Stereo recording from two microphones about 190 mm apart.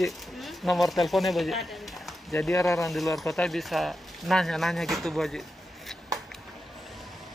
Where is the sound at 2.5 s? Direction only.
15° left (ahead or behind).